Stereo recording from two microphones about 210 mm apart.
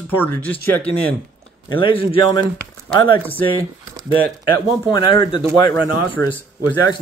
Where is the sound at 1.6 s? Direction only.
25° left (ahead or behind).